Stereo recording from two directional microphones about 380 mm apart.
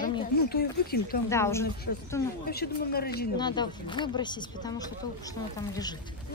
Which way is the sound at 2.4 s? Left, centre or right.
Left.